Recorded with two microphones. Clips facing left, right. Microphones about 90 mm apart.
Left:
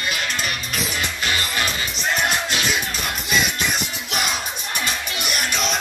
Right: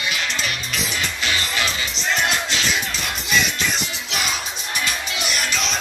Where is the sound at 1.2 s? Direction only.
45° left (ahead or behind).